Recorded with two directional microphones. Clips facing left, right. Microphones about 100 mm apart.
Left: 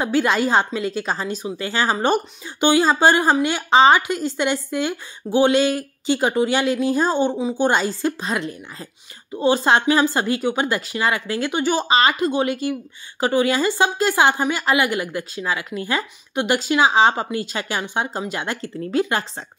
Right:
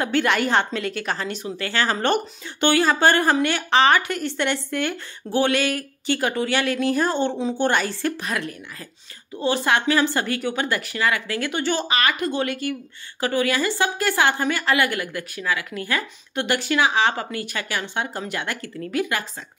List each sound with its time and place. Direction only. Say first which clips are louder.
0.0 s a woman's voice: left 2 dB; 20° left (ahead or behind)